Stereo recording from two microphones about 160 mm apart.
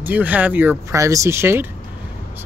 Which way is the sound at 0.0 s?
10° right (ahead or behind).